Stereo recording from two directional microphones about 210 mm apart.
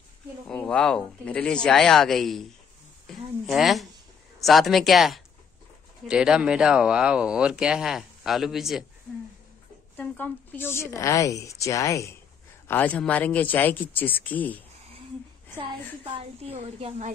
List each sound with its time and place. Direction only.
0.5 s speech: 5° left (ahead or behind)
9.9 s a woman's voice: 10° left (ahead or behind)
15.6 s a woman's voice: 25° right (ahead or behind)